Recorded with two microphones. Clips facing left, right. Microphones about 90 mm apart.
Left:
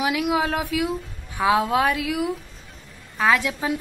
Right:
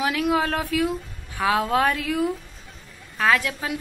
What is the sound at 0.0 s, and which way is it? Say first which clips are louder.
A woman's voice: even; 15° left (ahead or behind).